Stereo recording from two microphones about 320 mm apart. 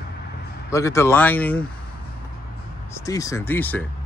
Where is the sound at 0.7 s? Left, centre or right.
Centre.